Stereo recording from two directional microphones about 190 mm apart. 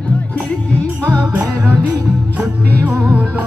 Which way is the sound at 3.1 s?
10° right (ahead or behind).